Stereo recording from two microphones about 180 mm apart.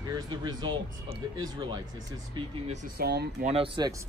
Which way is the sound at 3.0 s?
60° right (ahead or behind).